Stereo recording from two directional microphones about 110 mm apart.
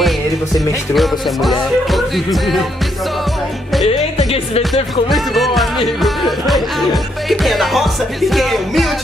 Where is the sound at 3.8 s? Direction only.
65° left (ahead or behind).